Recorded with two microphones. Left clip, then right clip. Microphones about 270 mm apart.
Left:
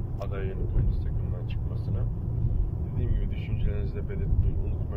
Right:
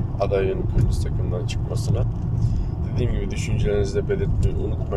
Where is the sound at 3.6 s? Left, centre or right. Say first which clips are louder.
Right 18 dB; right.